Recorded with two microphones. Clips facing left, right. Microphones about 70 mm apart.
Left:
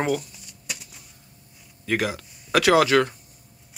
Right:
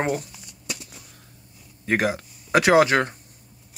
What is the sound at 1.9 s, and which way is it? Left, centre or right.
Speech, right.